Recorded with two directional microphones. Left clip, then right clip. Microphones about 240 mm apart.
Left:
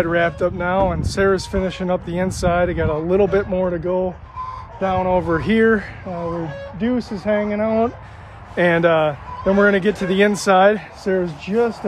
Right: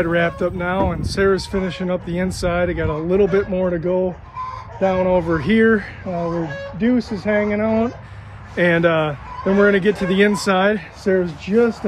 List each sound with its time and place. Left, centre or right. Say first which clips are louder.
0.0 s speech: left 1 dB; centre
6.2 s speech: even; right
6.8 s speech: right 2 dB; centre